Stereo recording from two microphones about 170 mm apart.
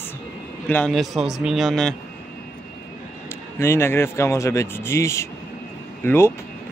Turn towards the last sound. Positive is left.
turn(degrees=15)  # may be behind; listen again after turning